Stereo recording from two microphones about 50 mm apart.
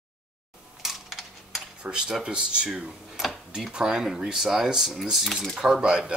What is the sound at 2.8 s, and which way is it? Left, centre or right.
Tick-tock, centre.